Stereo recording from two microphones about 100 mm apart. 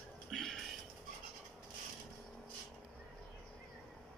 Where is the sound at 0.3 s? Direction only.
5° left (ahead or behind).